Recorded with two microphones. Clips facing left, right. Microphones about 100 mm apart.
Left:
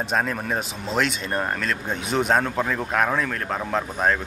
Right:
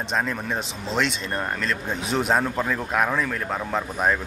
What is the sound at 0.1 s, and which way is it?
Speech, 5° left (ahead or behind).